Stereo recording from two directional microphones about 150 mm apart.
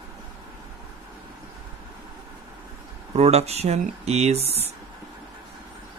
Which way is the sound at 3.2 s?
45° right (ahead or behind).